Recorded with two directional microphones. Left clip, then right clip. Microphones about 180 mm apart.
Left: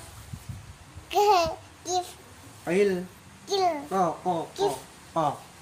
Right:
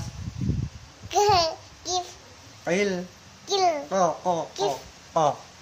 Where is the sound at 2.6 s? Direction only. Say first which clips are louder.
Left 1 dB; 30° right (ahead or behind).